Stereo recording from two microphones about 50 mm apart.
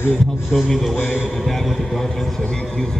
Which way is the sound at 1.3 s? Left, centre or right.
Centre.